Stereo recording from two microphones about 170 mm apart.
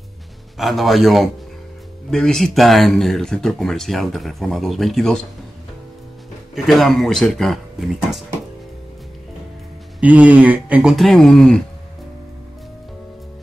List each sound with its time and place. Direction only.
0.6 s speech: centre (ahead or behind)
6.5 s speech: centre (ahead or behind)
9.9 s speech: 10° right (ahead or behind)